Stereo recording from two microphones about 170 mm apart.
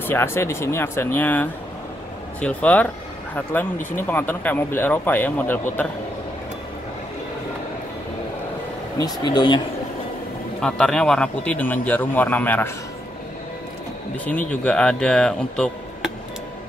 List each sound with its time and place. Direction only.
0.0 s speech: 15° left (ahead or behind)
3.9 s speech: 10° left (ahead or behind)
8.9 s speech: 25° left (ahead or behind)
10.6 s speech: 5° left (ahead or behind)
14.2 s speech: 10° left (ahead or behind)